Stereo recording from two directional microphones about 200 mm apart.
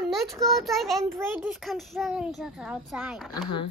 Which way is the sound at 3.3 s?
20° left (ahead or behind).